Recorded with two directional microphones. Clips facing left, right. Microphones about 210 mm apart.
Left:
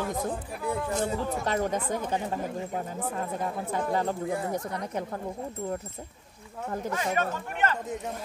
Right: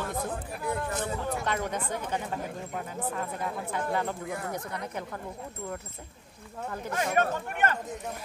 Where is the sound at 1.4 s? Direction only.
40° left (ahead or behind).